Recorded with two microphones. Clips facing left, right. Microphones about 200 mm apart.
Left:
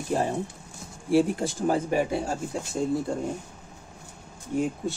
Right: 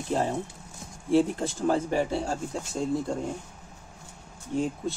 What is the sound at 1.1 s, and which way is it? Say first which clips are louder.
Speech: left 1 dB; 15° left (ahead or behind).